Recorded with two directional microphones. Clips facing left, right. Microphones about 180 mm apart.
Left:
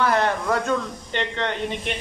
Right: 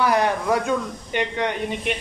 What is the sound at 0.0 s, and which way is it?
Speech, 10° right (ahead or behind).